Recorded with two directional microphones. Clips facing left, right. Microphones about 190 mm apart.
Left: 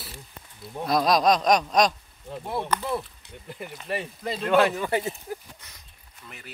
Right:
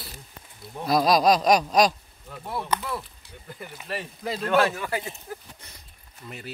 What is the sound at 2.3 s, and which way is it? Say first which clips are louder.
Speech: left 1 dB; 25° left (ahead or behind).